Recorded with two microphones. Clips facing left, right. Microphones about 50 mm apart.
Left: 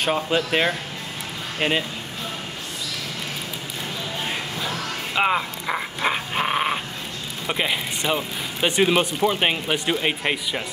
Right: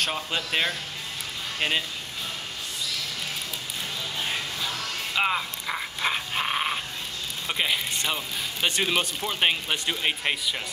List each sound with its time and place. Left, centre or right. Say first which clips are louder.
0.0 s speech: left 7 dB; centre
4.6 s speech: left 4 dB; left